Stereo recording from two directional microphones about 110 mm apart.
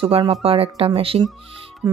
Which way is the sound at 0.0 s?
55° right (ahead or behind).